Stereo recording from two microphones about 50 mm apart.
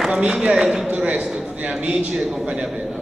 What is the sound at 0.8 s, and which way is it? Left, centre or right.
A man's voice, right.